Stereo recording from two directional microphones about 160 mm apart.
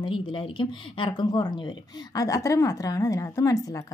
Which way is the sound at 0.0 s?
30° left (ahead or behind).